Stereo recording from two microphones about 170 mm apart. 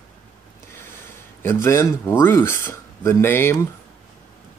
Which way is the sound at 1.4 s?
15° left (ahead or behind).